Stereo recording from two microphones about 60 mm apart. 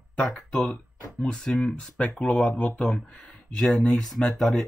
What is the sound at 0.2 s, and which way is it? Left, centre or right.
Speech, centre.